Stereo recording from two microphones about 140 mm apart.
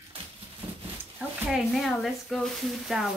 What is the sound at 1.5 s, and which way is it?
Speech, centre (ahead or behind).